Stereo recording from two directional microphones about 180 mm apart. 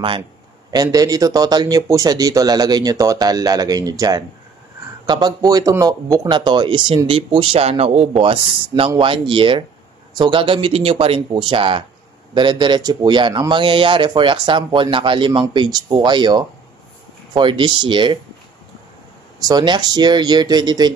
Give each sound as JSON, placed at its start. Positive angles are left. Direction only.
{"t": 0.9, "sound": "a man's voice", "side_deg": -20}
{"t": 19.4, "sound": "a man's voice", "side_deg": -25}